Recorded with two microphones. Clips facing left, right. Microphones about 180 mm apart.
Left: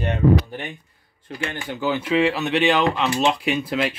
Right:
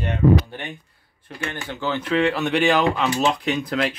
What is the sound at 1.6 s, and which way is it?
Speech, 10° left (ahead or behind).